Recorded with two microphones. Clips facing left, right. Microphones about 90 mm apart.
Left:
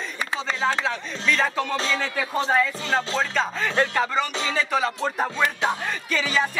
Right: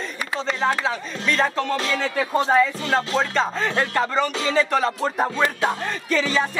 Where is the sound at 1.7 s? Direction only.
25° left (ahead or behind).